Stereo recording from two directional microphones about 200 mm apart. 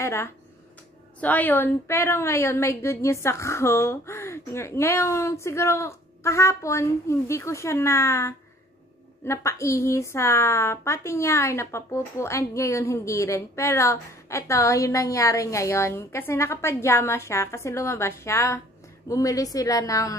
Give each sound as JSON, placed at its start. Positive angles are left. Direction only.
{"t": 0.0, "sound": "speech", "side_deg": 15}